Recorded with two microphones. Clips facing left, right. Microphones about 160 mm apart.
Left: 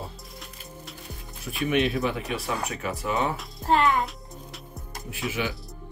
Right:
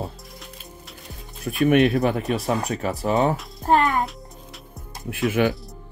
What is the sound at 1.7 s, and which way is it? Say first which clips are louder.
Speech: right 6 dB; 50° right (ahead or behind).